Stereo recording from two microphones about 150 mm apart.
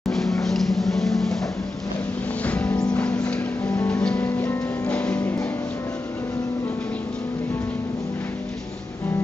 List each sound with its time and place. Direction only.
0.1 s music: 5° left (ahead or behind)
2.4 s music: 10° left (ahead or behind)